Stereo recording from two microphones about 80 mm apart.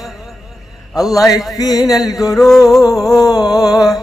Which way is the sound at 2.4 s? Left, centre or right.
Centre.